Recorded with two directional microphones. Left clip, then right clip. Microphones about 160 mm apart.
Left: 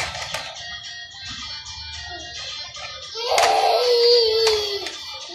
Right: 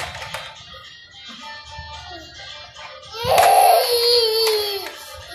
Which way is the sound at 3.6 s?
15° right (ahead or behind).